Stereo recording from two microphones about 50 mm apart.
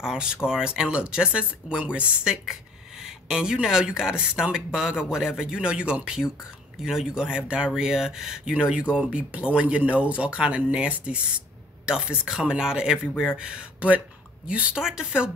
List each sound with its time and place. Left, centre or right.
0.0 s speech: centre
3.0 s a sound: centre
3.6 s speech: centre
8.5 s speech: right